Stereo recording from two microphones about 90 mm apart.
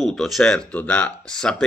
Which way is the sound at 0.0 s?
5° left (ahead or behind).